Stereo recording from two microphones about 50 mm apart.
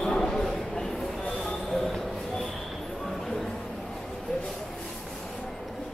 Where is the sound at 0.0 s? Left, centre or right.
Centre.